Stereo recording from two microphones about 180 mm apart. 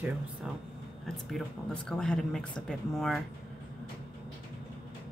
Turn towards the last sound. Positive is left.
turn(degrees=0)  # may be behind; listen again after turning